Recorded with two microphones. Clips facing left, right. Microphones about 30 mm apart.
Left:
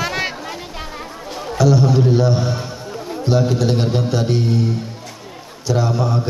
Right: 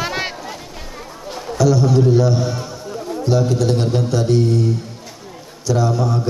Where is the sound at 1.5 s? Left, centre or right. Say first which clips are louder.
Even; centre.